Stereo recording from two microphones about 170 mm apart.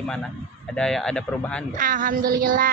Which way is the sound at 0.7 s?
5° left (ahead or behind).